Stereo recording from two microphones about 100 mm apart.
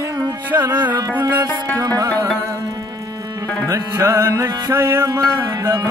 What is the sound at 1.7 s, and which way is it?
Music, 40° right (ahead or behind).